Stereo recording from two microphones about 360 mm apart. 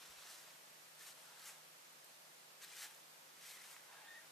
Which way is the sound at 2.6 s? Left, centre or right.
Centre.